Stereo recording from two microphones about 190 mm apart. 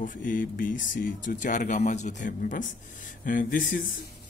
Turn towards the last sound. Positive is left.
turn(degrees=45)  # may be behind; listen again after turning